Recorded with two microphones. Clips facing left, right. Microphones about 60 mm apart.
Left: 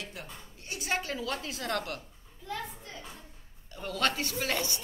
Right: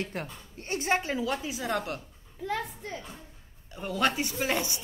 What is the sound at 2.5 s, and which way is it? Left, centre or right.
Speech, right.